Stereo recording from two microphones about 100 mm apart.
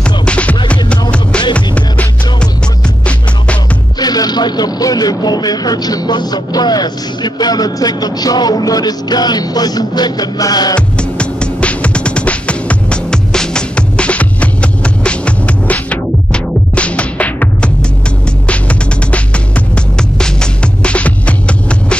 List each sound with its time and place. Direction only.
0.0 s music: 10° left (ahead or behind)
4.0 s speech: 40° left (ahead or behind)
11.0 s music: 10° left (ahead or behind)